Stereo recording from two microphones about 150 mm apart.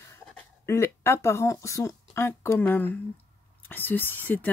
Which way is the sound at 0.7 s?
20° left (ahead or behind).